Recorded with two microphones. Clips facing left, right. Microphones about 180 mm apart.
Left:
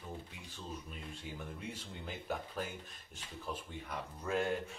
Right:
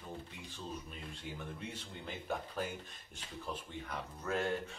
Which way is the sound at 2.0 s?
Centre (ahead or behind).